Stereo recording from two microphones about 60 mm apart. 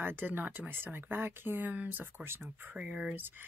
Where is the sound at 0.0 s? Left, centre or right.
Right.